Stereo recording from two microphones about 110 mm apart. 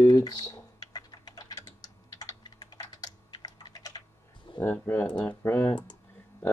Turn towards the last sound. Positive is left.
turn(degrees=15)  # may be behind; listen again after turning